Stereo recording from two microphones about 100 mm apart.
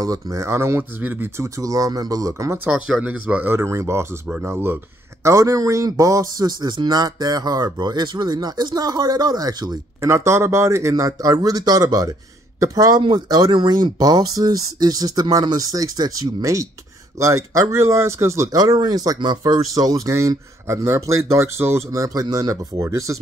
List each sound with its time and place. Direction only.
0.0 s speech: 35° right (ahead or behind)
1.6 s a man's voice: 35° right (ahead or behind)
2.6 s speech: 10° right (ahead or behind)
5.2 s a man's voice: 35° right (ahead or behind)
10.0 s a man's voice: 25° right (ahead or behind)
18.6 s a man's voice: 45° right (ahead or behind)